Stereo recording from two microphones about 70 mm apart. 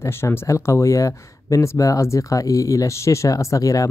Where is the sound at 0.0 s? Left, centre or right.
Left.